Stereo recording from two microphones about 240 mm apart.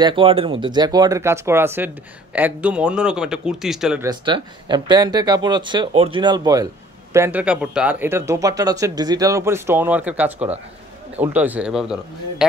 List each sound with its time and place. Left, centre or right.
0.0 s speech: right; by 4.1 s centre
4.1 s speech: centre